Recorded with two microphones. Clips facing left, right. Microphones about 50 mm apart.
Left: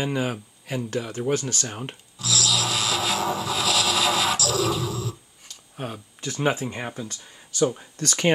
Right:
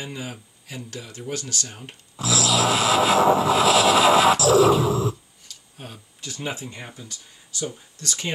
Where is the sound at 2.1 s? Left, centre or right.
Right.